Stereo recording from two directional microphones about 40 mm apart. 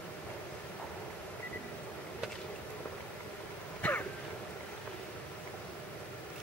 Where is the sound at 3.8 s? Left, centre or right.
Left.